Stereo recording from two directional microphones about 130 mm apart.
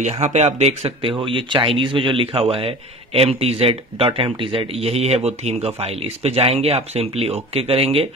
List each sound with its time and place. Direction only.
0.0 s speech: 60° right (ahead or behind)
1.1 s speech: 40° right (ahead or behind)